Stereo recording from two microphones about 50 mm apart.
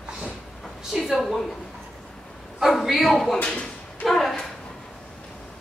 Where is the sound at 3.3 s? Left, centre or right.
Left.